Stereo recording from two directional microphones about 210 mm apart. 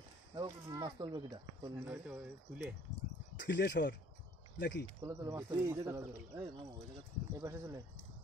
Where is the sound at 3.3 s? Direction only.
55° left (ahead or behind).